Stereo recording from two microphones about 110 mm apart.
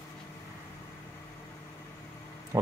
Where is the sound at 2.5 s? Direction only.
25° right (ahead or behind).